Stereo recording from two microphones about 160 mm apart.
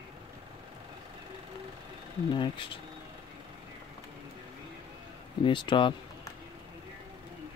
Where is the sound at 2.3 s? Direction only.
30° left (ahead or behind).